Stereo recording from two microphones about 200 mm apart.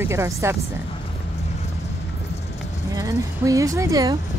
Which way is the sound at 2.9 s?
15° right (ahead or behind).